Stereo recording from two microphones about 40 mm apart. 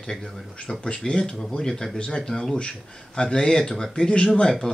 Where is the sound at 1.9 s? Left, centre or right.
Left.